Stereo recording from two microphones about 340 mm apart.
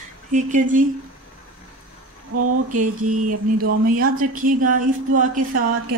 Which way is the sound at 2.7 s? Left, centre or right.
Right.